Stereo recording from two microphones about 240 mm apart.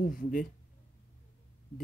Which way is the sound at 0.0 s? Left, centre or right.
Left.